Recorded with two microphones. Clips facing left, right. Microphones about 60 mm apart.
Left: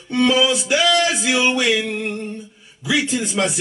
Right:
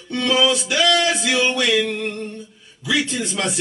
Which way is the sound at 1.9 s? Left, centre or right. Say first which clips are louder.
Even; left.